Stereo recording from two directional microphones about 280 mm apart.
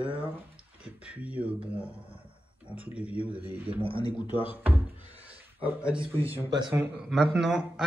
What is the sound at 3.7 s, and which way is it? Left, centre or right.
Speech, centre.